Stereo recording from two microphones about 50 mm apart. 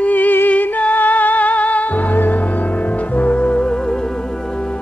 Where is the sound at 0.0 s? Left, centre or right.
Left; by 3.8 s centre.